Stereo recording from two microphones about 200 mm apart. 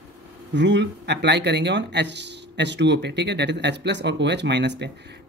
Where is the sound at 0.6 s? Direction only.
60° right (ahead or behind).